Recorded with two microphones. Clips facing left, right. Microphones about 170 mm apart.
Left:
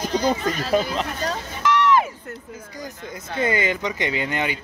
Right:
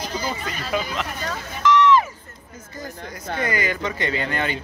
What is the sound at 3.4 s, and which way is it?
Speech, 25° left (ahead or behind).